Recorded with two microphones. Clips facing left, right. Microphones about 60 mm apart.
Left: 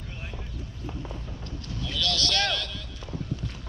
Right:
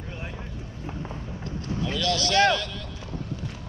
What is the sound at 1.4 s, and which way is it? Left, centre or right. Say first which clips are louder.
Vehicle: right 10 dB; right.